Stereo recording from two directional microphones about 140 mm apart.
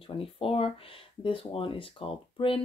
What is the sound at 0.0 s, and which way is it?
Speech, 40° left (ahead or behind).